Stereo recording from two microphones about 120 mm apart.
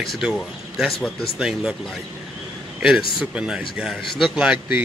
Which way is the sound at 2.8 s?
5° right (ahead or behind).